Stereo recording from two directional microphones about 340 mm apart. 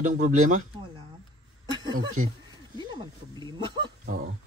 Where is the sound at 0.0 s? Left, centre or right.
Right.